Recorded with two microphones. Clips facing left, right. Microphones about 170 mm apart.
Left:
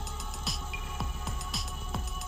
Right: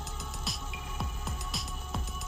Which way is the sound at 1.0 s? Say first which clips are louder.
Even; centre (ahead or behind).